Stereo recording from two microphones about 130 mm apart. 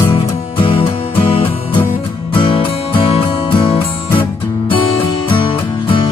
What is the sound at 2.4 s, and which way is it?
Music, 40° left (ahead or behind).